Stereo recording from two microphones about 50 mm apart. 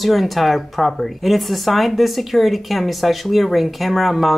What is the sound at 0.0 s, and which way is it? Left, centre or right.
Speech, centre.